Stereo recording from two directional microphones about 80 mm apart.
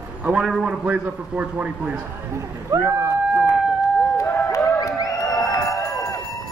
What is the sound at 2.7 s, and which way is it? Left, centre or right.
Speech, right.